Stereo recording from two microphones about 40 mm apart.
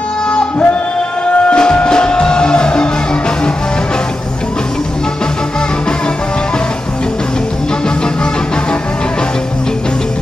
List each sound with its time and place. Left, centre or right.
1.5 s music: left